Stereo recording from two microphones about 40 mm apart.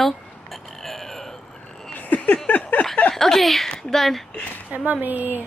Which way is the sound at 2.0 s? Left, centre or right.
Left.